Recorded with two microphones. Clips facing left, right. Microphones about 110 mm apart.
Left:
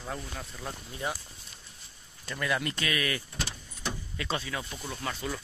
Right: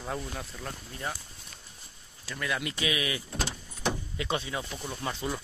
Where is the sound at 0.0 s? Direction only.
5° right (ahead or behind).